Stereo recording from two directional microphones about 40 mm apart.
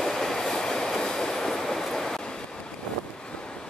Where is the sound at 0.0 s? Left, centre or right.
Centre.